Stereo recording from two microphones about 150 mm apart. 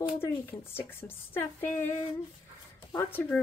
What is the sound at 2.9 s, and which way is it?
Speech, 15° left (ahead or behind).